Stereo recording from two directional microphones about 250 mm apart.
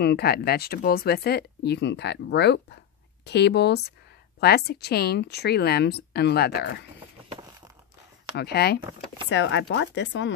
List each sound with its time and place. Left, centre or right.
0.0 s speech: left
8.4 s speech: left